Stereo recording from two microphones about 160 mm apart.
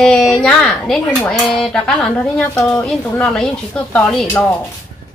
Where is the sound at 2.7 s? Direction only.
5° left (ahead or behind).